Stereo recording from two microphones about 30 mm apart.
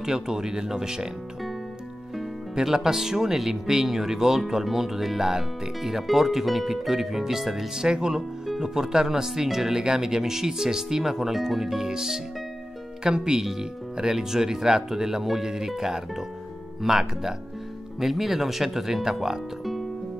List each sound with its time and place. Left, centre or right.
0.0 s speech: centre
2.5 s speech: centre
7.8 s speech: right